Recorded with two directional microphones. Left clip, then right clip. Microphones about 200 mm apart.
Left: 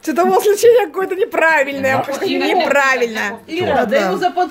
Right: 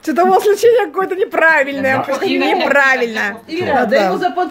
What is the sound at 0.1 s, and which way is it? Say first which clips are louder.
Speech: right 2 dB; centre (ahead or behind).